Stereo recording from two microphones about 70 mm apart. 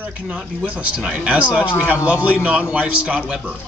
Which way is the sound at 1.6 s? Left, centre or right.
Left.